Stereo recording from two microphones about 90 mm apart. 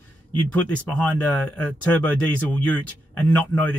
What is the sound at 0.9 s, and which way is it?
Speech, 15° left (ahead or behind).